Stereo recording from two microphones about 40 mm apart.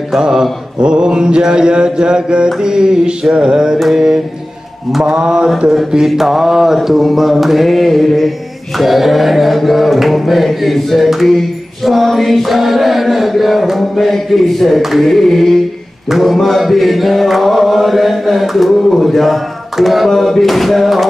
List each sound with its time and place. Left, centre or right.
0.2 s mantra: centre
5.0 s mantra: centre
5.9 s a sound: centre